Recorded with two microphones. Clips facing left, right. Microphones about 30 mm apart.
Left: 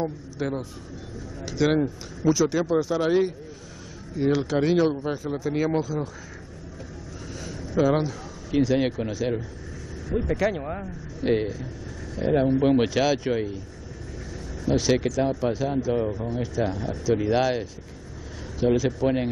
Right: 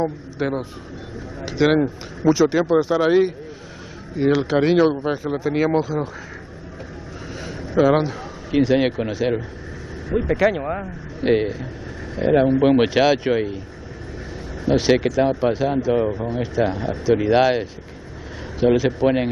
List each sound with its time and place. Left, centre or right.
0.0 s speech: right
7.3 s a man's voice: right
14.6 s speech: right